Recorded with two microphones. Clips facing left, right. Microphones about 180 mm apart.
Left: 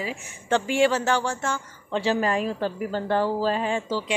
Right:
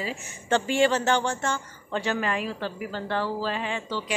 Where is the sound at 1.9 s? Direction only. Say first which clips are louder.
Left 4 dB; 30° left (ahead or behind).